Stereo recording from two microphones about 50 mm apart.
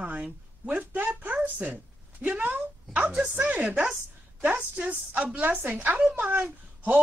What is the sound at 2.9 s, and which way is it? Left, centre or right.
Speech, centre.